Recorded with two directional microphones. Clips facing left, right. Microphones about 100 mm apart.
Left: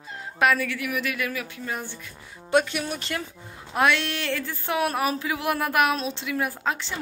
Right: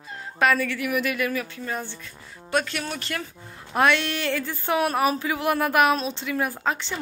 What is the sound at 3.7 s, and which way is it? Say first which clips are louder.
Speech: right 1 dB; centre (ahead or behind).